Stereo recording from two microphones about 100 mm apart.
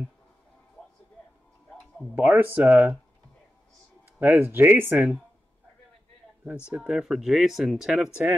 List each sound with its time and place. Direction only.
2.1 s speech: 15° right (ahead or behind)
4.2 s speech: 20° right (ahead or behind)
6.7 s speech: 10° right (ahead or behind)